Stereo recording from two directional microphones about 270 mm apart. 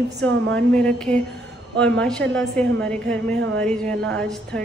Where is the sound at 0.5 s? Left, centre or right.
Centre.